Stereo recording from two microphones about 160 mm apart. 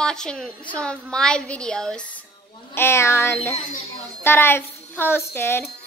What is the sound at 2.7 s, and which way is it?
A woman's voice, 15° left (ahead or behind).